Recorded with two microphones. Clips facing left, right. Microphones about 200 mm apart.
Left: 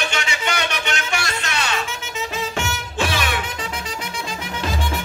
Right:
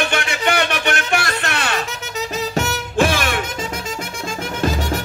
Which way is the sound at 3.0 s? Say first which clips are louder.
Right 6 dB; 50° right (ahead or behind).